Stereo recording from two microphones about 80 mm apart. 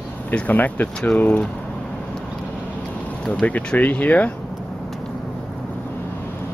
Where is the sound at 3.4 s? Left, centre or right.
Centre.